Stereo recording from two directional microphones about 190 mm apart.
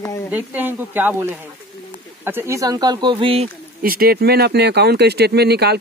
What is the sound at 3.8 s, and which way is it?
Speech, 50° right (ahead or behind).